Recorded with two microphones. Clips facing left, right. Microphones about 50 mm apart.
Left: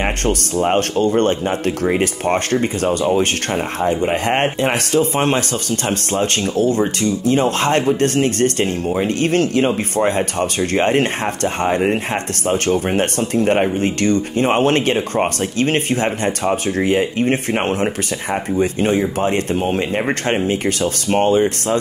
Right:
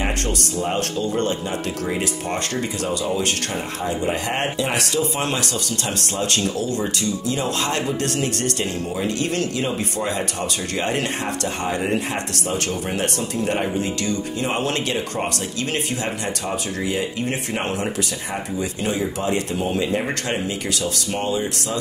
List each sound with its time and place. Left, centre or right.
0.0 s speech: left